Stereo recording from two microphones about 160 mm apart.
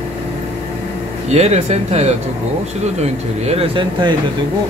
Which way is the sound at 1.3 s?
45° right (ahead or behind).